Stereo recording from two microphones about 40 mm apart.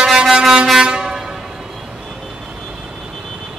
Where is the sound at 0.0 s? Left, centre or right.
Centre.